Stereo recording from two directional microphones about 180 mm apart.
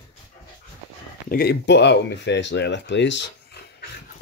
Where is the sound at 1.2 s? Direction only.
60° left (ahead or behind); by 3.5 s 75° left (ahead or behind).